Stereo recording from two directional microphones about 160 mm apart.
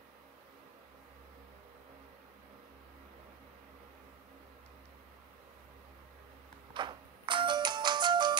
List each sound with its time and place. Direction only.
6.7 s music: 30° right (ahead or behind)